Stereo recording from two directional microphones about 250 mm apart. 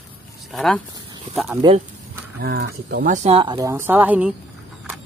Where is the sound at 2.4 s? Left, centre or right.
Right; by 4.3 s centre.